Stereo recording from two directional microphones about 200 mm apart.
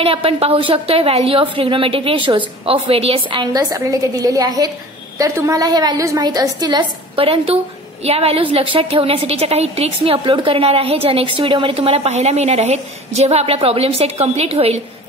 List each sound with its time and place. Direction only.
0.0 s a woman's voice: 30° right (ahead or behind)